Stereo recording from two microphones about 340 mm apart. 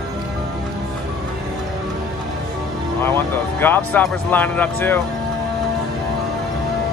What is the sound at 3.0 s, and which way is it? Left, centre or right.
Speech, centre.